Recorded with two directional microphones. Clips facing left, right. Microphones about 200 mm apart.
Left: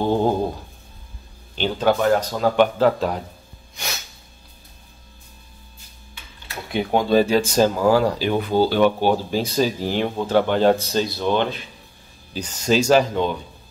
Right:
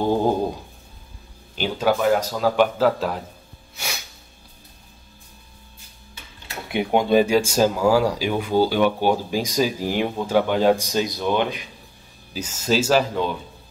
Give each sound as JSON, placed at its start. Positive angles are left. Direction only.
{"t": 0.0, "sound": "speech", "side_deg": -10}
{"t": 1.5, "sound": "a man's voice", "side_deg": -5}
{"t": 3.7, "sound": "a sound", "side_deg": -10}
{"t": 6.7, "sound": "a man's voice", "side_deg": -15}